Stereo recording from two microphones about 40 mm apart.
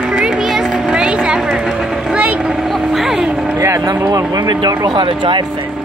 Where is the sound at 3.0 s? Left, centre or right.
Centre.